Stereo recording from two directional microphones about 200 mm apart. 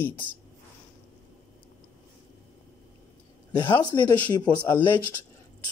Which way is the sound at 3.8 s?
20° left (ahead or behind).